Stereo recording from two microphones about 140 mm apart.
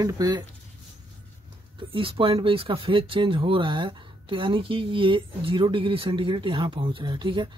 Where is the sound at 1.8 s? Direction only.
40° right (ahead or behind).